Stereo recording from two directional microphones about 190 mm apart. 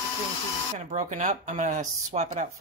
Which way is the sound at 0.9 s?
35° right (ahead or behind).